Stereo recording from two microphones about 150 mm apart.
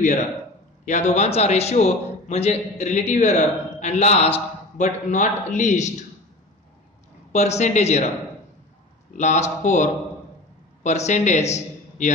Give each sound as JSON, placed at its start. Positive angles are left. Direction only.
{"t": 0.8, "sound": "a man's voice", "side_deg": 50}
{"t": 7.3, "sound": "a man's voice", "side_deg": 50}
{"t": 9.1, "sound": "a man's voice", "side_deg": 50}